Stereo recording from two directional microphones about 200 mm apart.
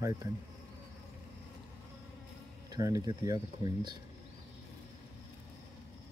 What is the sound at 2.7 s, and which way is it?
Speech, 15° right (ahead or behind).